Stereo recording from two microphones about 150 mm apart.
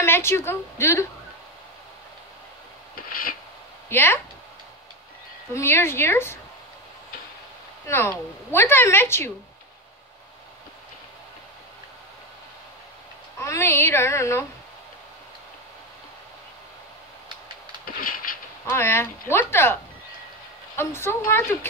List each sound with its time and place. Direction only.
0.0 s a woman's voice: 15° left (ahead or behind)
3.9 s a woman's voice: 15° left (ahead or behind)
5.5 s a woman's voice: 15° left (ahead or behind)
7.8 s a woman's voice: 20° left (ahead or behind)
13.4 s a woman's voice: 20° left (ahead or behind)
17.8 s a sound: 70° left (ahead or behind)
18.7 s a woman's voice: 15° left (ahead or behind)